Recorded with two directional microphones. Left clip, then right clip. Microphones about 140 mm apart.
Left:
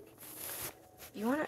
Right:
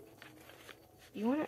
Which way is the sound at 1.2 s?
30° right (ahead or behind).